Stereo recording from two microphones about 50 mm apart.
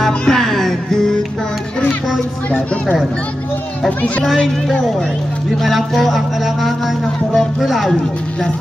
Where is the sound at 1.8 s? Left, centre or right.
Left.